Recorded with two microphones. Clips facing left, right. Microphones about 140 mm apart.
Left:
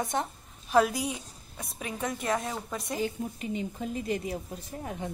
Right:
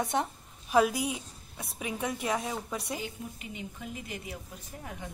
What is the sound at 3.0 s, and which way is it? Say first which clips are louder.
A woman's voice: left 8 dB; 35° left (ahead or behind).